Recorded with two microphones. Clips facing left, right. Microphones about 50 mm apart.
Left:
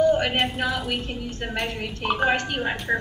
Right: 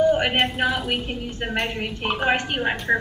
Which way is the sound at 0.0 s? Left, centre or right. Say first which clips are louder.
Right 1 dB; centre.